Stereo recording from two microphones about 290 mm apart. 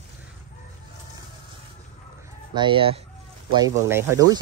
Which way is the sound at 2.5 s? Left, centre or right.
Centre.